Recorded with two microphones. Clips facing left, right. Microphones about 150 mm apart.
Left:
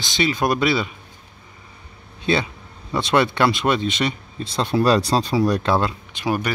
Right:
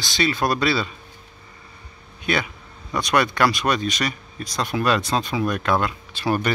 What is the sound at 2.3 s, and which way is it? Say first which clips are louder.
Speech: left 3 dB; 30° left (ahead or behind).